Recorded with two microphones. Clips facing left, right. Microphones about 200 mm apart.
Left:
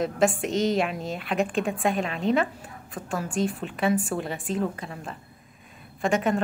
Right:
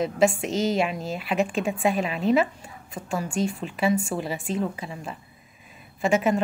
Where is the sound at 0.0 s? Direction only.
Centre (ahead or behind).